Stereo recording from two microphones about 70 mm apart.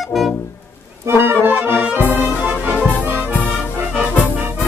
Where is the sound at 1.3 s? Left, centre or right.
Right.